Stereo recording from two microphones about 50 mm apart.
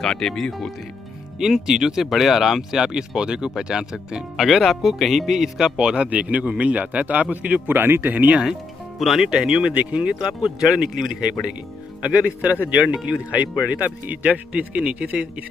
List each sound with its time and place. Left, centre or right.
0.0 s speech: centre
1.4 s speech: centre
4.4 s speech: centre
5.8 s a man's voice: centre
7.6 s speech: right
8.4 s a man's voice: centre
12.0 s a man's voice: right